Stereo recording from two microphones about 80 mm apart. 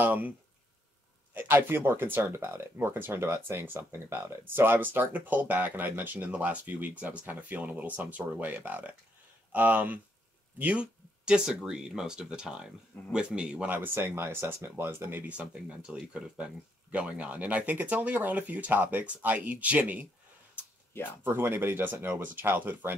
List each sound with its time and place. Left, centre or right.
0.0 s speech: right
1.3 s speech: right
13.7 s speech: right
20.5 s a sound: left
21.2 s speech: right